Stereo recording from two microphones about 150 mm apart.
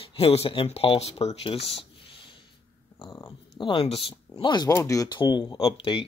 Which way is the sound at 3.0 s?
25° left (ahead or behind).